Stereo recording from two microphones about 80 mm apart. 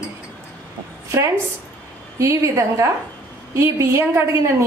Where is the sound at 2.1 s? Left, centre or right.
Right.